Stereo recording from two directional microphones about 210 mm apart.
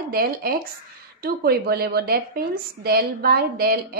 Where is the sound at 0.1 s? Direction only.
45° right (ahead or behind).